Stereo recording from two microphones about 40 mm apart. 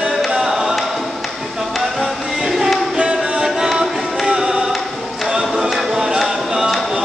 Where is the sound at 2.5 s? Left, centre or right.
Centre.